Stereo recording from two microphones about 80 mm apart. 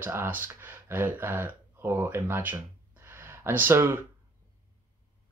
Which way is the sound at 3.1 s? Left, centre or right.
Right.